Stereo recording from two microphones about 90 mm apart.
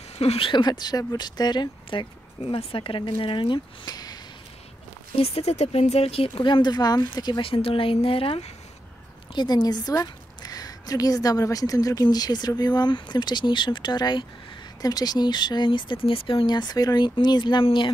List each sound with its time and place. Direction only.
0.2 s speech: 75° left (ahead or behind)
3.8 s a sound: 50° left (ahead or behind)
5.1 s speech: 90° left; by 7.4 s 55° left (ahead or behind)
7.4 s speech: 90° left
9.3 s a woman's voice: 55° left (ahead or behind); by 16.4 s 85° left
16.4 s speech: 50° left (ahead or behind)